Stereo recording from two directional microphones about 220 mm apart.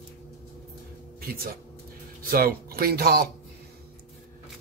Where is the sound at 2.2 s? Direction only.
40° right (ahead or behind).